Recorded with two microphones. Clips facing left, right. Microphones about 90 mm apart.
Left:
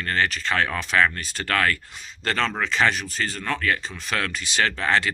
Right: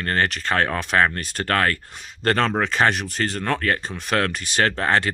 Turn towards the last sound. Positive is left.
turn(degrees=-40)  # may be behind; listen again after turning